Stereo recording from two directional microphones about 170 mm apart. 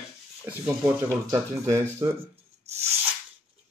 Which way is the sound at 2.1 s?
35° right (ahead or behind).